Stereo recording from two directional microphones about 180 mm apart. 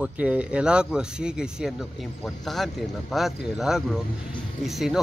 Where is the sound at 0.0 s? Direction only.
5° right (ahead or behind).